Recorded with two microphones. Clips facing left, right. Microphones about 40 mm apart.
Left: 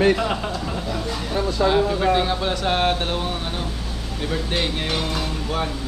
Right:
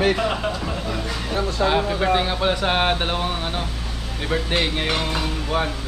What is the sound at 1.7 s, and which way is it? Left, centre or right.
Speech, centre.